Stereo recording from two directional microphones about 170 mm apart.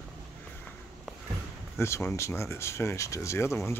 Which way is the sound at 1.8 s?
15° left (ahead or behind).